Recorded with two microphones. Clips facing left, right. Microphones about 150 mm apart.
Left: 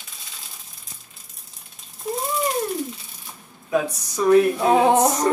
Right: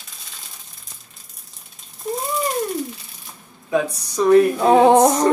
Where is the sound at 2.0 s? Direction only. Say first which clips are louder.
Right 1 dB; centre (ahead or behind).